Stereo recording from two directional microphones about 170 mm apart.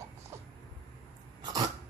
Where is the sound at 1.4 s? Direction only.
20° right (ahead or behind).